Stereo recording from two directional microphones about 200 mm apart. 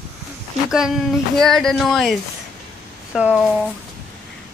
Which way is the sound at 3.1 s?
5° right (ahead or behind).